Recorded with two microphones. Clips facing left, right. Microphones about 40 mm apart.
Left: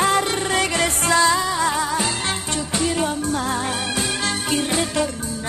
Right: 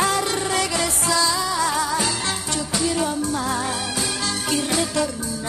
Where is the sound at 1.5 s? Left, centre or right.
Left.